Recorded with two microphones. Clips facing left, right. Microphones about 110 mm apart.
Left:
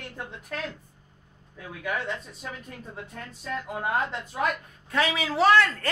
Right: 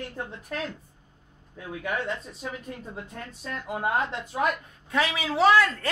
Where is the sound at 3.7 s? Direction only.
10° right (ahead or behind).